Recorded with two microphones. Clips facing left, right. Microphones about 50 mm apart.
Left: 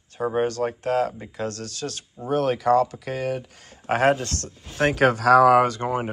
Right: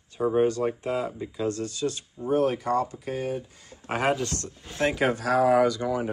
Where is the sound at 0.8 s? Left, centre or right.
Left.